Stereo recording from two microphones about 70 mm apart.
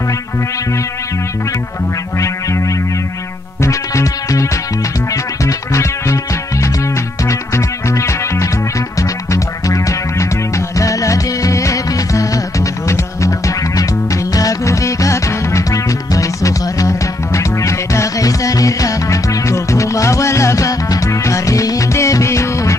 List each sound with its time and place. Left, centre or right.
2.1 s music: left
3.6 s music: left
7.2 s music: left
14.3 s music: left